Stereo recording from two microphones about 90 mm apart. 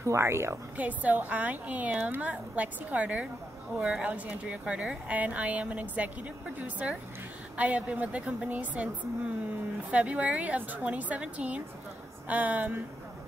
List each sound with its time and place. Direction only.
0.0 s a woman's voice: 30° right (ahead or behind)
0.7 s a woman's voice: 15° right (ahead or behind)